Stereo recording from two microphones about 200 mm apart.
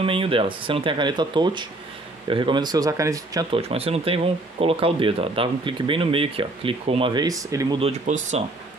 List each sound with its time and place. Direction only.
0.0 s speech: 25° right (ahead or behind)
3.5 s speech: 30° right (ahead or behind)
7.8 s speech: 35° right (ahead or behind)